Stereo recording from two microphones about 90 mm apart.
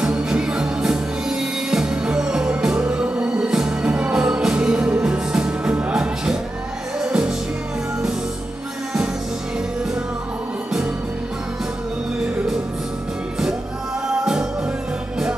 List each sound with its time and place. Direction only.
0.0 s music: 10° right (ahead or behind)
14.0 s music: 5° right (ahead or behind)